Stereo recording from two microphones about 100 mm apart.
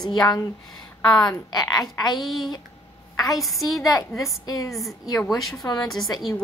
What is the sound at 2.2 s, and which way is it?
Speech, centre (ahead or behind).